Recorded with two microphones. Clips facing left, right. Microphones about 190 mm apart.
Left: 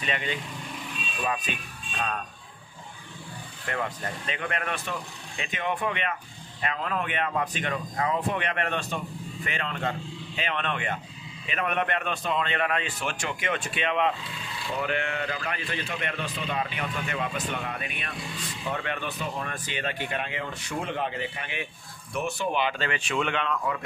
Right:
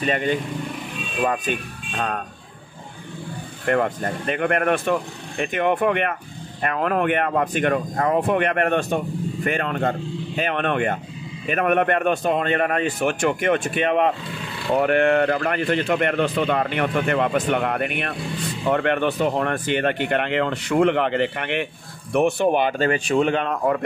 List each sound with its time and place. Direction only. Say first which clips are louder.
0.0 s speech: right 10 dB; 45° right (ahead or behind)
3.6 s speech: right 11 dB; 55° right (ahead or behind)
14.7 s speech: right 12 dB; 60° right (ahead or behind)
22.1 s speech: right 10 dB; 60° right (ahead or behind)